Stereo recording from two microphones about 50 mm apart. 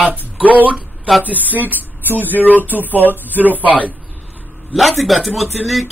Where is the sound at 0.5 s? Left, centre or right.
Right.